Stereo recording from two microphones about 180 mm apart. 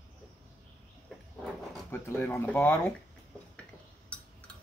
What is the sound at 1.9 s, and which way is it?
Speech, 15° left (ahead or behind).